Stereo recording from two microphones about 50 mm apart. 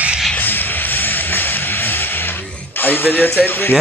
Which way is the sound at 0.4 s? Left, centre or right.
Left.